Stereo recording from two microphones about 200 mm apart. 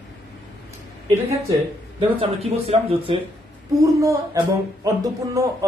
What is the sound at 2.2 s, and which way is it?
Speech, 30° right (ahead or behind).